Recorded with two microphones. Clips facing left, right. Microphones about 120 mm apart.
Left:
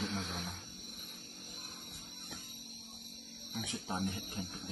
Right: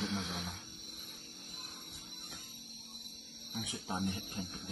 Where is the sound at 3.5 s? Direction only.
15° right (ahead or behind).